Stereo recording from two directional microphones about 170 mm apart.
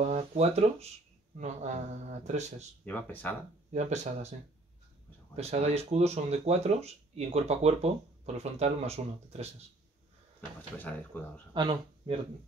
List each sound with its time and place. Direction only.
0.1 s speech: 40° right (ahead or behind)
2.8 s speech: 10° left (ahead or behind)
3.7 s speech: 45° right (ahead or behind)
5.3 s speech: 40° right (ahead or behind)
10.8 s speech: 10° left (ahead or behind)
11.5 s speech: 25° right (ahead or behind)